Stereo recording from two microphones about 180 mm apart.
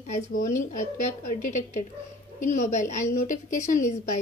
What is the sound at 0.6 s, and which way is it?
A woman's voice, 45° left (ahead or behind).